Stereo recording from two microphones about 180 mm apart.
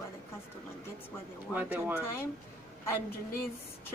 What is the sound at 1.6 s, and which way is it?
Speech, 10° right (ahead or behind).